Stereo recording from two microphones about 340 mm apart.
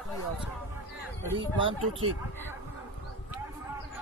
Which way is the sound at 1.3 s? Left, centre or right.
Centre.